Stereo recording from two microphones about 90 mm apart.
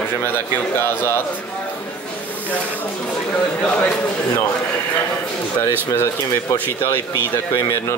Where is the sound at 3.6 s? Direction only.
15° left (ahead or behind).